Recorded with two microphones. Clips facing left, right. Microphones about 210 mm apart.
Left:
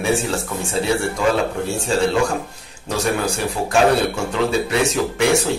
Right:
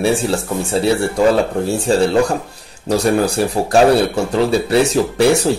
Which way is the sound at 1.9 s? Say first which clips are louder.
Right 4 dB; 35° right (ahead or behind).